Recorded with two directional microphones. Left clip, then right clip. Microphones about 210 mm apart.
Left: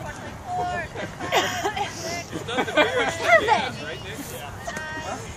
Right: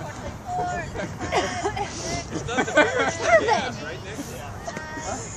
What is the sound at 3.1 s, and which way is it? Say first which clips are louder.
Speech: left 2 dB; 15° right (ahead or behind).